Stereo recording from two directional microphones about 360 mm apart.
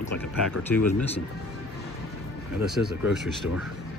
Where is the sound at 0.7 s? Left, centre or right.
Centre.